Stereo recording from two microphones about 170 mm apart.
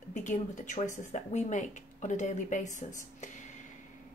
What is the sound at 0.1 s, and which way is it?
Speech, 50° left (ahead or behind).